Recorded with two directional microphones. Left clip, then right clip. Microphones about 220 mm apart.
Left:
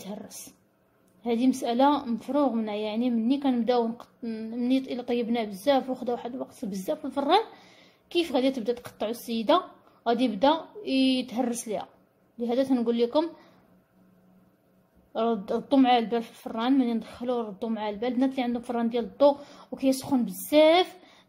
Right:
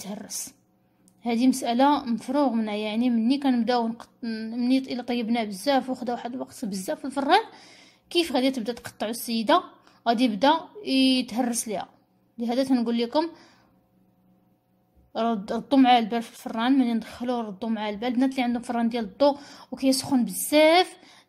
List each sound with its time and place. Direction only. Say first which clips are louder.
0.0 s a woman's voice: right 4 dB; 25° right (ahead or behind)
15.1 s a woman's voice: even; 25° right (ahead or behind)